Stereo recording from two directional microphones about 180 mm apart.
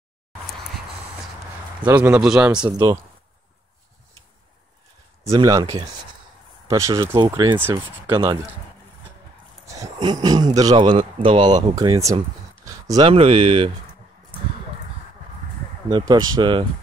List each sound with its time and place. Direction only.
1.9 s a man's voice: 10° right (ahead or behind)
2.8 s speech: 15° right (ahead or behind)
5.4 s speech: 20° right (ahead or behind)
7.5 s speech: 15° right (ahead or behind)
9.7 s speech: 20° right (ahead or behind)
12.6 s a sound: 20° right (ahead or behind)
13.0 s speech: 30° right (ahead or behind)
15.9 s speech: 20° right (ahead or behind)